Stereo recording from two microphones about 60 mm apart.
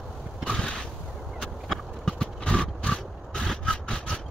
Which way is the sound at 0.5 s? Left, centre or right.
Centre.